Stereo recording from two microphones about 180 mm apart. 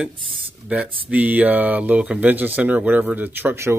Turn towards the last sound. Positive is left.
turn(degrees=-15)  # may be behind; listen again after turning